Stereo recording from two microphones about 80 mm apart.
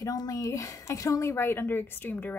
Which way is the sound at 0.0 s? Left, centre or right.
Left.